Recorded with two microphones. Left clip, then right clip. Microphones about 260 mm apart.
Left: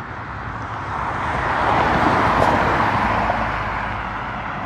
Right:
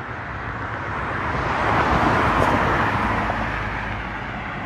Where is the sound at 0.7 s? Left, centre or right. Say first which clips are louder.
Left 4 dB; left.